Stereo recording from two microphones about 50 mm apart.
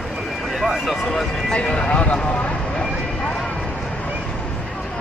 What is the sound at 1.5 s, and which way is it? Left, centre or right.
Horse, left.